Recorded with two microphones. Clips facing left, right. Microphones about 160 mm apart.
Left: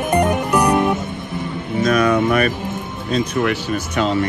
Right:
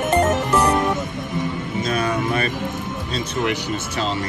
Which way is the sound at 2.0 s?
60° left (ahead or behind).